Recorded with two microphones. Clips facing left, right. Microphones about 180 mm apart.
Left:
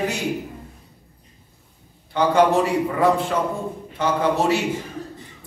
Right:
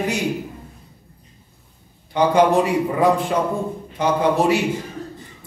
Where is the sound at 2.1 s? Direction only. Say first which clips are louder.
Right 1 dB; 15° right (ahead or behind).